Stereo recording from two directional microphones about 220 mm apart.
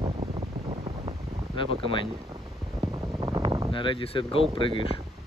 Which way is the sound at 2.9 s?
20° right (ahead or behind).